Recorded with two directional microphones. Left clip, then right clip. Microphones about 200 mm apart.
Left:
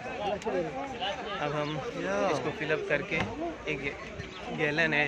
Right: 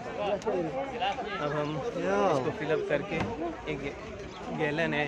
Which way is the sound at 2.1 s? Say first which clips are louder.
Right 2 dB; 50° right (ahead or behind).